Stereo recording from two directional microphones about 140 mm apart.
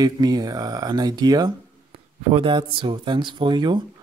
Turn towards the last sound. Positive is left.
turn(degrees=-35)  # may be behind; listen again after turning